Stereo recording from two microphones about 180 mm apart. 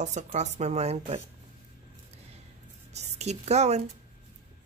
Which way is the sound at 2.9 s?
40° right (ahead or behind).